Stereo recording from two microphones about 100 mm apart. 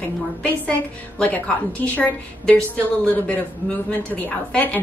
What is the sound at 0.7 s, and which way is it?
A woman's voice, 15° left (ahead or behind).